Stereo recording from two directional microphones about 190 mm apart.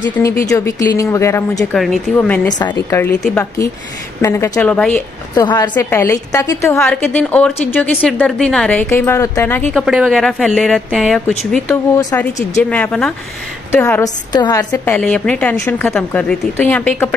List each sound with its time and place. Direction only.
0.1 s a woman's voice: 15° left (ahead or behind)
1.7 s a woman's voice: centre (ahead or behind)
4.2 s a woman's voice: 15° left (ahead or behind)
5.3 s a woman's voice: 20° left (ahead or behind)
14.3 s a woman's voice: 20° left (ahead or behind)
15.0 s a woman's voice: 5° left (ahead or behind)